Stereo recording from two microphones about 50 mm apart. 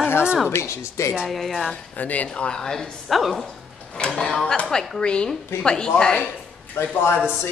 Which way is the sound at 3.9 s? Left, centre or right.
Centre.